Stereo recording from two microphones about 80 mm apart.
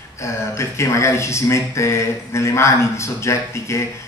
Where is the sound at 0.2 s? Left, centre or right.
Left.